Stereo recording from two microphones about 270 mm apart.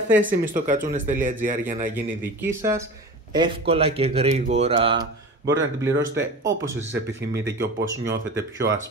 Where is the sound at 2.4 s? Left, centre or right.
Centre.